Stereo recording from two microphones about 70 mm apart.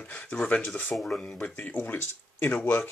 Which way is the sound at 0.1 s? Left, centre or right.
Centre.